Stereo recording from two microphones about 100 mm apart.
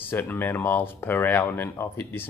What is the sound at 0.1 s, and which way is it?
Speech, 20° left (ahead or behind).